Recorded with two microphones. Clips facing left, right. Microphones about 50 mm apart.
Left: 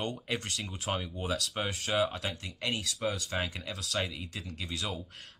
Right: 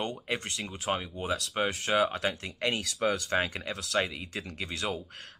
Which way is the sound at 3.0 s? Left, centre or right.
Right.